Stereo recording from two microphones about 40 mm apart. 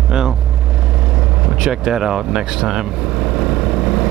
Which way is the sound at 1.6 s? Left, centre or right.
Centre.